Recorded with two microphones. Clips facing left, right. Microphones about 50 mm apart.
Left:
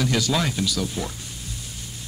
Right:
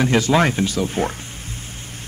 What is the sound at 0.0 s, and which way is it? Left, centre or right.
A man's voice, right.